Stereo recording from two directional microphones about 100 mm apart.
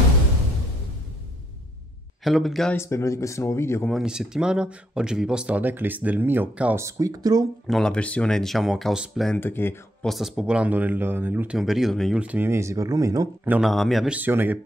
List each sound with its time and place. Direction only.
2.2 s speech: centre (ahead or behind)
2.7 s speech: 30° left (ahead or behind)
3.9 s speech: 5° right (ahead or behind)
6.8 s speech: 35° right (ahead or behind)
7.6 s speech: 5° left (ahead or behind)
9.4 s speech: 20° left (ahead or behind)
10.0 s speech: centre (ahead or behind); by 11.5 s 20° right (ahead or behind)
11.5 s speech: 5° right (ahead or behind)
12.2 s speech: 15° right (ahead or behind); by 13.3 s 35° right (ahead or behind)
13.6 s speech: centre (ahead or behind)
14.1 s speech: 20° right (ahead or behind)